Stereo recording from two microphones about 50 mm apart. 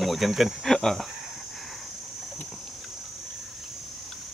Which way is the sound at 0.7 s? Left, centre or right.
Centre.